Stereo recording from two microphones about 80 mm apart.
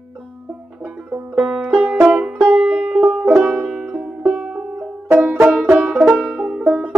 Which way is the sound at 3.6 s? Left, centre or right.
Centre.